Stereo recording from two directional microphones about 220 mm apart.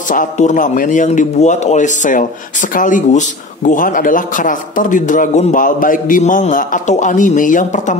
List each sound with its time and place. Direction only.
0.1 s a man's voice: 35° left (ahead or behind)